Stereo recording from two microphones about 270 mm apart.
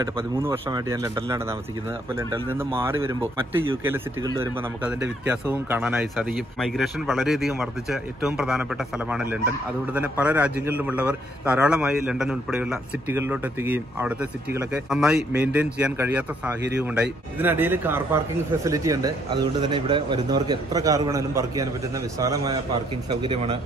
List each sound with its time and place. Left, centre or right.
0.0 s speech: centre
2.5 s speech: centre